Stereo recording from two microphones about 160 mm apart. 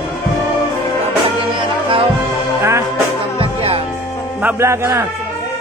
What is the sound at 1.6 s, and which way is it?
Music, 35° right (ahead or behind).